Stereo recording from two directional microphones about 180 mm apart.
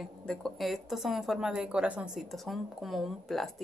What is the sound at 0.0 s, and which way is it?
A woman's voice, 5° left (ahead or behind).